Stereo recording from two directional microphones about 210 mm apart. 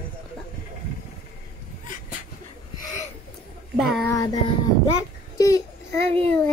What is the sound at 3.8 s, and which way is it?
Child singing, centre (ahead or behind).